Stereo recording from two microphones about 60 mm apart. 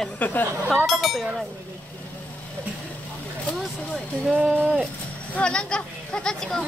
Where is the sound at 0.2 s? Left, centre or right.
Left.